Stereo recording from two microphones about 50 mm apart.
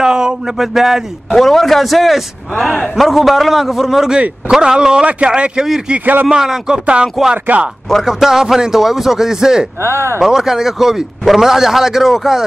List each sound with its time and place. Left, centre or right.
0.0 s a man's voice: centre
1.3 s a man's voice: centre
5.9 s a man's voice: right
6.2 s a man's voice: centre
7.4 s speech: right
8.0 s a man's voice: centre